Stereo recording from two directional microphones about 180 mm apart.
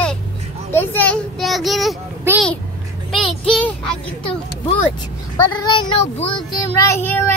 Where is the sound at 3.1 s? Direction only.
5° left (ahead or behind).